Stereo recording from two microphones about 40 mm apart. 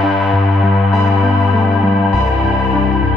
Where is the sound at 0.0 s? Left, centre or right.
Centre.